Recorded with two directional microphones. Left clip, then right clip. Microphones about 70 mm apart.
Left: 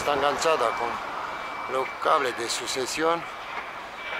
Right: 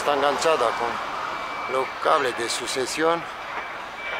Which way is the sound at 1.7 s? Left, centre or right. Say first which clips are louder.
Right 2 dB; centre.